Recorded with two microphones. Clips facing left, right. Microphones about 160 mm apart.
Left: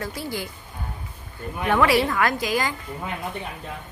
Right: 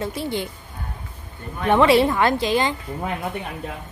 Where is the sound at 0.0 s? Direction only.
25° right (ahead or behind).